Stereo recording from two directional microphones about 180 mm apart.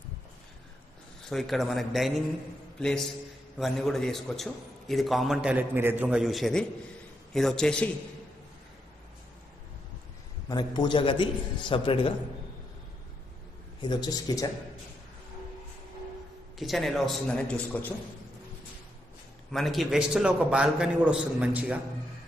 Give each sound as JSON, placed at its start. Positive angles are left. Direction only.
{"t": 1.3, "sound": "a man's voice", "side_deg": 0}
{"t": 10.5, "sound": "a man's voice", "side_deg": 25}
{"t": 13.7, "sound": "a man's voice", "side_deg": 25}
{"t": 16.5, "sound": "a man's voice", "side_deg": 0}
{"t": 19.5, "sound": "a man's voice", "side_deg": 0}